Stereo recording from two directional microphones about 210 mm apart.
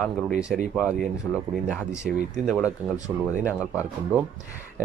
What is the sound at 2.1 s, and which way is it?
Speech, 35° right (ahead or behind).